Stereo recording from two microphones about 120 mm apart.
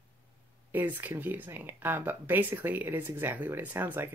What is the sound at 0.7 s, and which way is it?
Speech, 15° right (ahead or behind).